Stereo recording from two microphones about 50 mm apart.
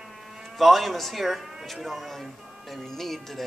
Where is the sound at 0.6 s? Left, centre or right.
Centre.